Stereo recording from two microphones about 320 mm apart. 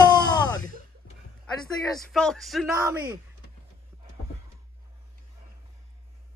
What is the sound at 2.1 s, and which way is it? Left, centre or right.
Speech, centre.